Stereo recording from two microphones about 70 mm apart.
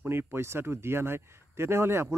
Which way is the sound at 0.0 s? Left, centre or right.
Right.